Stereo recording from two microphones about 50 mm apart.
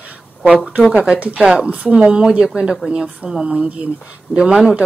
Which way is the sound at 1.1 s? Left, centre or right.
Right.